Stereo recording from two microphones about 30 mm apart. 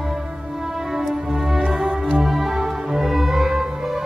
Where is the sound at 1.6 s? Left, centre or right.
Right.